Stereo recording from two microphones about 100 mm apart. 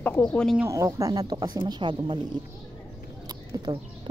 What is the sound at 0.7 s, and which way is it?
Speech, 30° right (ahead or behind).